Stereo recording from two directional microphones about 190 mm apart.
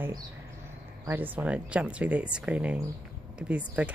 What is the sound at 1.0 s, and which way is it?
Speech, 10° right (ahead or behind).